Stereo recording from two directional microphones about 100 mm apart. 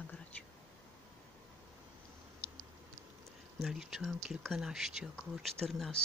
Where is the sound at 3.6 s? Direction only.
5° right (ahead or behind).